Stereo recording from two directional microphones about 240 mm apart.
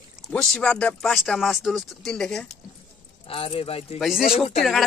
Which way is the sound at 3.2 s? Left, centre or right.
Left.